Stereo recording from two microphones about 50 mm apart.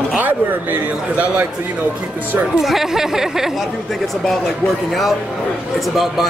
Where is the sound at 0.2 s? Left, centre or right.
Right.